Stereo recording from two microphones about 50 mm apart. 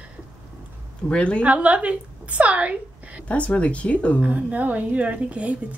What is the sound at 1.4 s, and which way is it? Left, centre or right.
A woman's voice, right.